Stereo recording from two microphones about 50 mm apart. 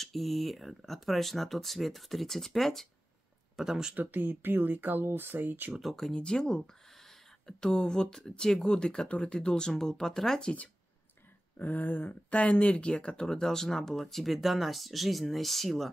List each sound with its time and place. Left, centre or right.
0.0 s speech: centre
3.5 s speech: centre
3.9 s speech: right
5.8 s speech: centre
6.1 s speech: centre
11.5 s speech: left; by 15.9 s centre